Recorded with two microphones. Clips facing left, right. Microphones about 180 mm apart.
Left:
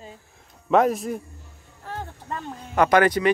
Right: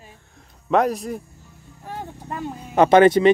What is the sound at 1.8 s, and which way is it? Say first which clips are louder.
Vehicle: right 1 dB; 10° right (ahead or behind).